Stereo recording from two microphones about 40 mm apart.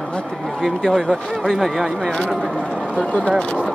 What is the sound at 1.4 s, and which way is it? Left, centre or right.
Speech, centre.